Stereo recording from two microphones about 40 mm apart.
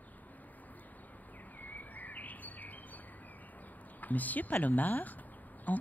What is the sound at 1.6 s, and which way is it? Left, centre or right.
Bird vocalization, left.